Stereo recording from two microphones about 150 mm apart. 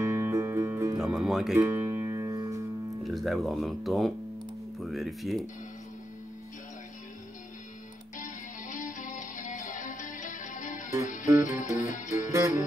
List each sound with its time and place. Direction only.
0.0 s music: 15° right (ahead or behind)
0.9 s music: 5° right (ahead or behind)
1.6 s music: 15° right (ahead or behind)
3.0 s speech: centre (ahead or behind)
8.2 s music: 60° left (ahead or behind)
11.3 s music: 20° right (ahead or behind)
11.8 s music: 55° left (ahead or behind)
12.3 s music: 20° right (ahead or behind)